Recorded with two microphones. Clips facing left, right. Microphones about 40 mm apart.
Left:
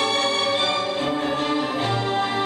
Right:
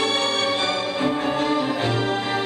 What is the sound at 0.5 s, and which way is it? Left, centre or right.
Music, left.